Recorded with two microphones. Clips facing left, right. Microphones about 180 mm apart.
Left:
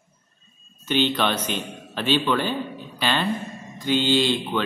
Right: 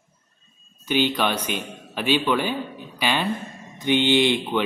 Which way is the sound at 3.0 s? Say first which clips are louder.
Even; 10° right (ahead or behind).